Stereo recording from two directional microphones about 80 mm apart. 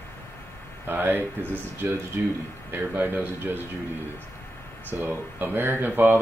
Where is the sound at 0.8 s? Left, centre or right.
Right.